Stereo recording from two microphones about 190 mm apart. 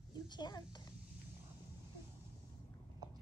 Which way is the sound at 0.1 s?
20° left (ahead or behind).